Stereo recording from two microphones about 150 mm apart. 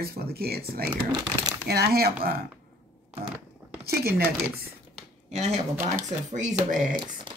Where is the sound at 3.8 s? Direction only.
90° right.